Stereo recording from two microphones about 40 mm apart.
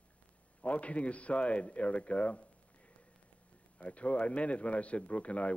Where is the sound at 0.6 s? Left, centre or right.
Left.